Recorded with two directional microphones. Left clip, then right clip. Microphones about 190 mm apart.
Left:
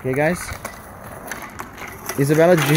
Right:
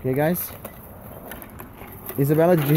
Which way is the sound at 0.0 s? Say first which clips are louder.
Left 3 dB; 15° right (ahead or behind).